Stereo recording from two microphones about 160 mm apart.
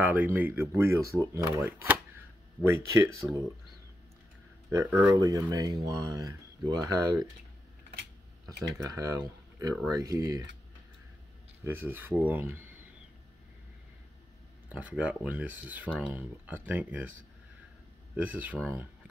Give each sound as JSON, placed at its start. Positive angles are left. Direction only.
{"t": 0.0, "sound": "speech", "side_deg": -10}
{"t": 4.6, "sound": "speech", "side_deg": -20}
{"t": 8.9, "sound": "speech", "side_deg": -20}
{"t": 11.6, "sound": "speech", "side_deg": -15}
{"t": 14.7, "sound": "speech", "side_deg": -10}
{"t": 18.1, "sound": "speech", "side_deg": -10}